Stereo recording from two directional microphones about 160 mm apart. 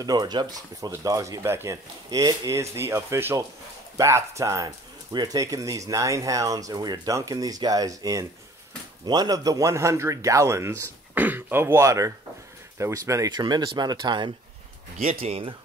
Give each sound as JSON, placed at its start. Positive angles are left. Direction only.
{"t": 0.0, "sound": "speech", "side_deg": -25}